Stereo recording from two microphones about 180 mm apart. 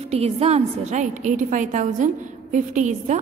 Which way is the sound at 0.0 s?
35° right (ahead or behind).